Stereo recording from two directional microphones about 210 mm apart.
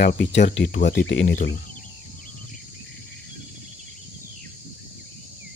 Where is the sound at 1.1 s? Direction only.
60° left (ahead or behind).